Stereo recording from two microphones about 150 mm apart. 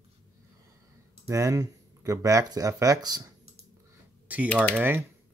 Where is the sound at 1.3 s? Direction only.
20° right (ahead or behind).